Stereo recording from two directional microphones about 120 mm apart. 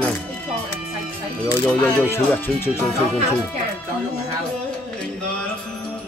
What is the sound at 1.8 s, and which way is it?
Speech, 15° left (ahead or behind).